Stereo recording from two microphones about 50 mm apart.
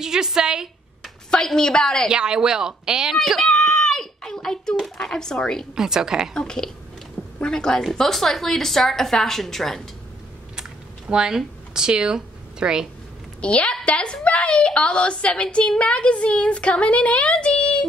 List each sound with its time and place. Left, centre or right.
0.0 s speech: centre
1.3 s speech: centre
2.0 s speech: centre
3.2 s a sound: centre
4.7 s speech: centre
5.8 s speech: centre
6.3 s a woman's voice: centre
10.5 s a sound: centre
13.4 s a woman's voice: left